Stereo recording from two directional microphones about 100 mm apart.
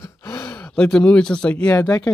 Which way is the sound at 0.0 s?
30° left (ahead or behind).